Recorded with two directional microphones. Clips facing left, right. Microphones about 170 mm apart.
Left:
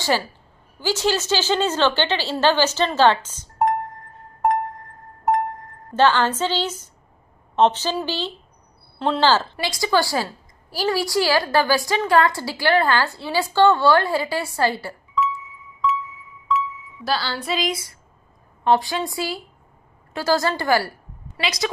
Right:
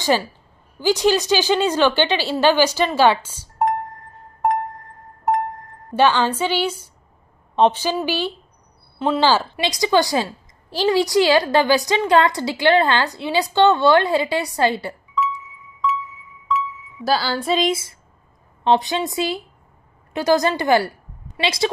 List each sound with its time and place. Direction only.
0.7 s a woman's voice: 15° right (ahead or behind)
4.4 s music: centre (ahead or behind)
5.9 s a woman's voice: 15° right (ahead or behind)
8.9 s a sound: 5° right (ahead or behind)
9.2 s a woman's voice: 15° right (ahead or behind)
15.2 s music: centre (ahead or behind)
17.0 s speech: 45° right (ahead or behind)
17.6 s a woman's voice: 25° right (ahead or behind)